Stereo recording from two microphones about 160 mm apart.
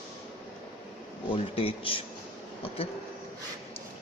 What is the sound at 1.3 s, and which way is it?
Speech, 35° left (ahead or behind).